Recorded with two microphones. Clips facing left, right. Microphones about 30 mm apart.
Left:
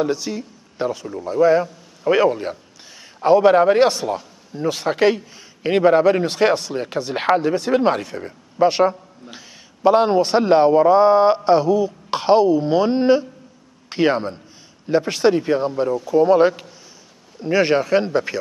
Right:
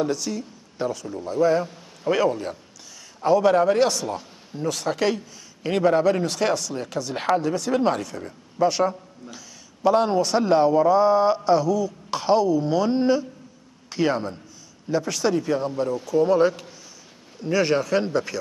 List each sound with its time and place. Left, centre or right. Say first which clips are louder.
0.0 s a man's voice: left 3 dB; left
15.7 s a man's voice: left 5 dB; centre